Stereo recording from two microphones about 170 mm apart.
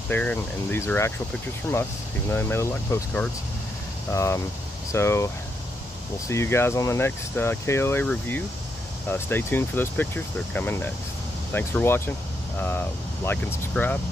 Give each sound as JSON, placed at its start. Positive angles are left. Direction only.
{"t": 0.1, "sound": "speech", "side_deg": 10}